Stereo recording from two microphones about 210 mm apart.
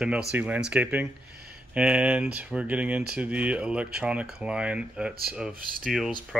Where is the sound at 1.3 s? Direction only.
50° right (ahead or behind).